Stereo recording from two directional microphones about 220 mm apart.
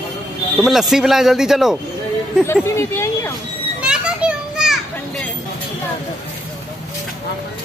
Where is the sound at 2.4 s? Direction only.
10° left (ahead or behind).